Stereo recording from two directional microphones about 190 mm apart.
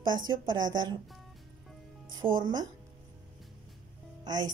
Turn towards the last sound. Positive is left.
turn(degrees=-20)  # may be behind; listen again after turning